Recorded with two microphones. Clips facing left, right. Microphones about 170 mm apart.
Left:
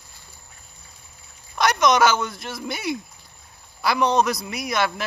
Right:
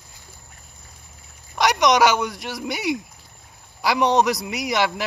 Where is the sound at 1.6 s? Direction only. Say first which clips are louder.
Right 1 dB; 15° right (ahead or behind).